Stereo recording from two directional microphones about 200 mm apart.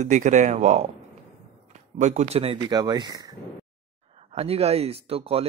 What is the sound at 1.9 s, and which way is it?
Speech, 35° right (ahead or behind).